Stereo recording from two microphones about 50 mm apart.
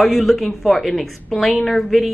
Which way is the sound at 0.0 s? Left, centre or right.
Centre.